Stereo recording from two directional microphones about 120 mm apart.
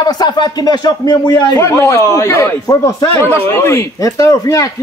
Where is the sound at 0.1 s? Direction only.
35° left (ahead or behind).